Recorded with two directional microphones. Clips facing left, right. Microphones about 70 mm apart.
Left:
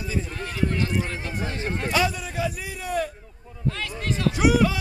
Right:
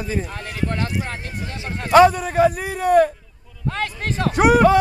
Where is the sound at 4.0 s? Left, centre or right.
Right.